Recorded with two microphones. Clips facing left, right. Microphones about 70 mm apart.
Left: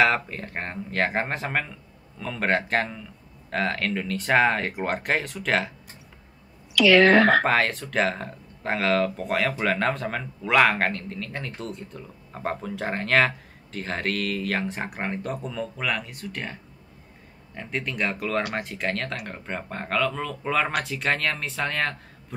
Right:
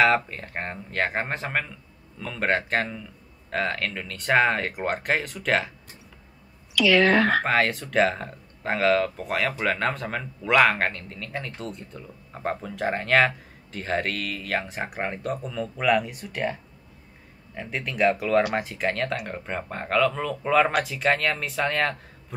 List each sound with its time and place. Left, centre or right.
0.0 s speech: centre
6.7 s a woman's voice: left
7.4 s speech: centre
17.6 s speech: centre